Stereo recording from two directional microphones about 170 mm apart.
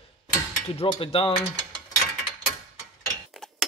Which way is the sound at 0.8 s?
30° left (ahead or behind).